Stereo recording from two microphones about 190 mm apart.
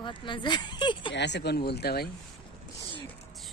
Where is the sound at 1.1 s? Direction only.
65° left (ahead or behind).